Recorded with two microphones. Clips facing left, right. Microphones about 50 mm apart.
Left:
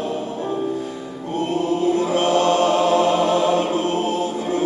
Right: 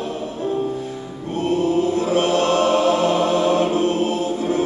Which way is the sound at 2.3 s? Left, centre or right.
Left.